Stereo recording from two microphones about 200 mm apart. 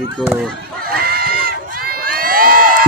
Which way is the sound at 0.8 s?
50° right (ahead or behind).